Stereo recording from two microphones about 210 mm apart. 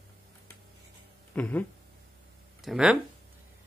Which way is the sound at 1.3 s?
5° left (ahead or behind).